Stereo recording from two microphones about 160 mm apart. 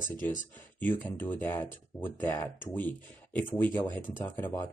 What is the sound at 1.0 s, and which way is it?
Speech, 10° left (ahead or behind).